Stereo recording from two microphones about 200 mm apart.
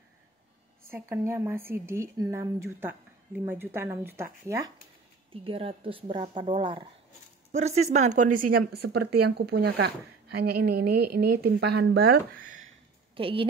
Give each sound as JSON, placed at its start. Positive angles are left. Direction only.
{"t": 0.8, "sound": "speech", "side_deg": -10}
{"t": 5.3, "sound": "a woman's voice", "side_deg": -25}
{"t": 13.1, "sound": "a woman's voice", "side_deg": -25}